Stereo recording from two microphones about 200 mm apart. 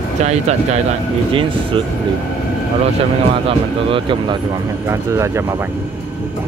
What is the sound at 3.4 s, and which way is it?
Speech, 25° right (ahead or behind).